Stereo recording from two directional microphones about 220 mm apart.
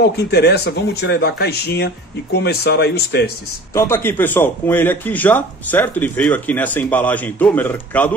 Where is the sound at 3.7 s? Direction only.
10° left (ahead or behind).